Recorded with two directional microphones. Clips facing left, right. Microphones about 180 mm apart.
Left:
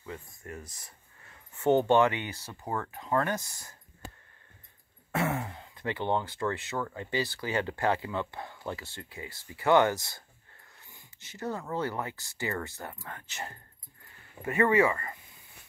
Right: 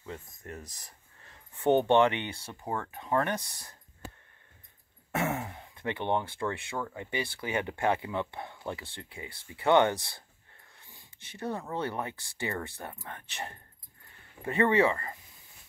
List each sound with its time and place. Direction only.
0.0 s speech: 35° right (ahead or behind)
1.7 s speech: 20° right (ahead or behind)
5.2 s speech: 15° right (ahead or behind)
11.3 s speech: 25° right (ahead or behind)